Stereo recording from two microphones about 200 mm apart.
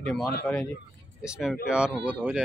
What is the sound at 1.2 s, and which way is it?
Speech, 5° right (ahead or behind).